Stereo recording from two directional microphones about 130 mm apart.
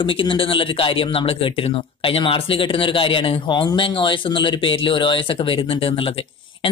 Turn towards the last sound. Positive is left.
turn(degrees=45)  # may be behind; listen again after turning